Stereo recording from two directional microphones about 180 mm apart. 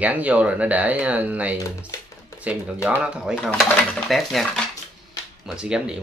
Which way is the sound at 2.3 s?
20° left (ahead or behind).